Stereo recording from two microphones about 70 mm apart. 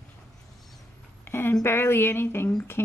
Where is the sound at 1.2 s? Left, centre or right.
Left.